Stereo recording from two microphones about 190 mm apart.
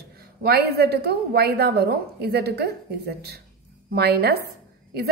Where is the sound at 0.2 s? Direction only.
55° right (ahead or behind).